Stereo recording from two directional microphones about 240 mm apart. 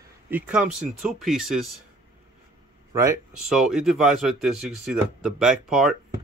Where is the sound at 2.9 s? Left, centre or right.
Centre.